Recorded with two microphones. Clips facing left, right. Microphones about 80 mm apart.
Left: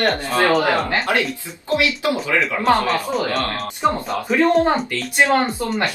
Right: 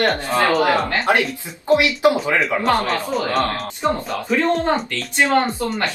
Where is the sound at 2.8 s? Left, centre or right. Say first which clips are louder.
Left 1 dB; centre.